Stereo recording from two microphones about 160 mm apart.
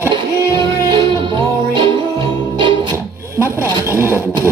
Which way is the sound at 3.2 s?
15° right (ahead or behind).